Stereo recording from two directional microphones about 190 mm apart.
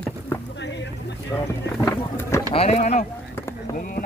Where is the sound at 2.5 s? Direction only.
35° left (ahead or behind).